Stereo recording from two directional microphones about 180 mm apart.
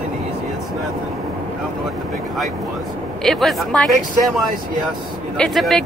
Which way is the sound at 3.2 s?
Centre (ahead or behind).